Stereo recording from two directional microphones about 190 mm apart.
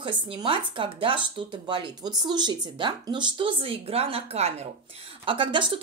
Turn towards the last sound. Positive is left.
turn(degrees=-25)  # may be behind; listen again after turning